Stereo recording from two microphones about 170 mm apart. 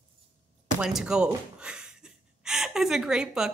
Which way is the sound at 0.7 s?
5° right (ahead or behind).